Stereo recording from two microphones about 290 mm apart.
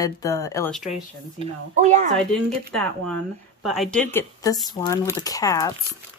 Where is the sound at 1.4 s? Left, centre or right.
Right.